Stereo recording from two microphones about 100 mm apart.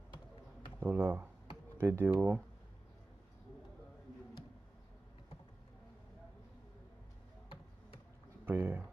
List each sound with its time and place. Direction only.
0.7 s speech: 20° right (ahead or behind)
8.5 s speech: 20° right (ahead or behind)